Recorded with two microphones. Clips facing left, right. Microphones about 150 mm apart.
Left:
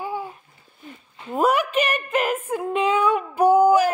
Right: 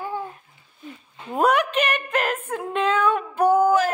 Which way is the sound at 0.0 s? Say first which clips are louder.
Left 1 dB; 10° left (ahead or behind).